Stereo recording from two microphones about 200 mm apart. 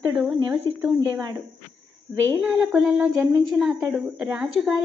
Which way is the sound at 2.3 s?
5° right (ahead or behind).